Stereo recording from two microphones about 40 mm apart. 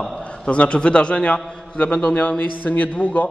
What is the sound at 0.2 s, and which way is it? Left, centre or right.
A man's voice, left.